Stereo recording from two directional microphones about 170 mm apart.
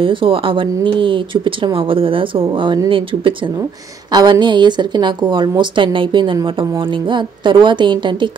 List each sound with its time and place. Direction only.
0.0 s a woman's voice: 30° right (ahead or behind)